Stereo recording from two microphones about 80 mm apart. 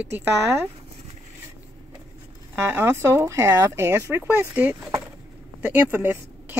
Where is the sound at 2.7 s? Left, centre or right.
Right.